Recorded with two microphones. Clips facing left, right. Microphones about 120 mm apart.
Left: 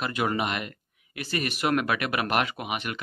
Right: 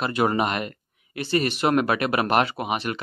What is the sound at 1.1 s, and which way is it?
Speech, 30° right (ahead or behind).